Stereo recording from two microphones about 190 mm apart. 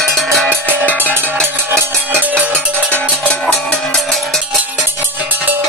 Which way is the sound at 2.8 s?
10° left (ahead or behind).